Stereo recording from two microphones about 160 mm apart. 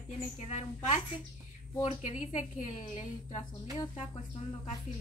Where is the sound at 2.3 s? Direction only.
50° left (ahead or behind).